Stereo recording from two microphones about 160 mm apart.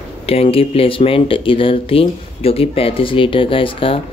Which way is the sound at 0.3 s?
35° left (ahead or behind).